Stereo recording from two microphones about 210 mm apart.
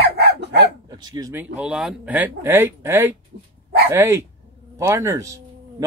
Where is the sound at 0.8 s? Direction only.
20° right (ahead or behind).